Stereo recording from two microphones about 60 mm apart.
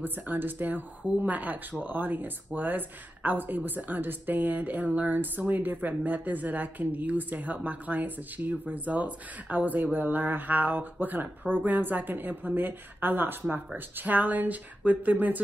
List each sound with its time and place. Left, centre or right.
0.0 s speech: right